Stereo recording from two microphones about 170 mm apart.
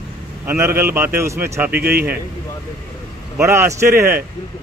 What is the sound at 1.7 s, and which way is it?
Speech, 65° right (ahead or behind).